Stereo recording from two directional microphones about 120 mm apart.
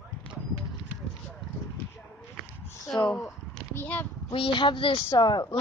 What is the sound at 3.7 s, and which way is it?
Speech, 15° left (ahead or behind).